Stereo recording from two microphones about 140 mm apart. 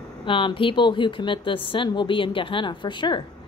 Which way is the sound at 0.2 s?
35° left (ahead or behind).